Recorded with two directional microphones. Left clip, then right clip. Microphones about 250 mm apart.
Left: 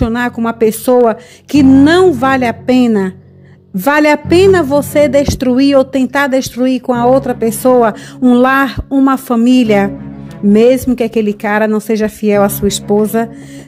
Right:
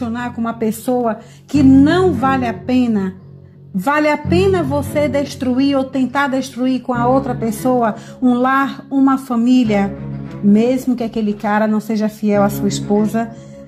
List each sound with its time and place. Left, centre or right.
0.0 s a woman's voice: left